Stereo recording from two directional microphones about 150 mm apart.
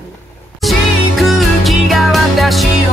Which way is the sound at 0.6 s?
Centre (ahead or behind).